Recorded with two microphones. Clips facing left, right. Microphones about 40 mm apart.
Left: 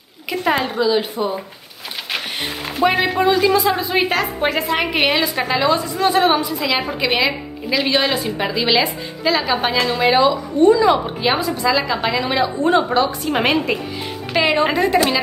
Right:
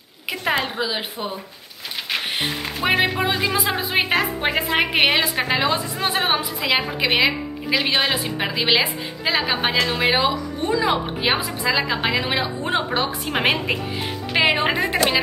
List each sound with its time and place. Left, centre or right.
0.4 s a woman's voice: centre
0.7 s a woman's voice: centre
2.1 s music: centre
3.2 s a woman's voice: centre
5.7 s a woman's voice: right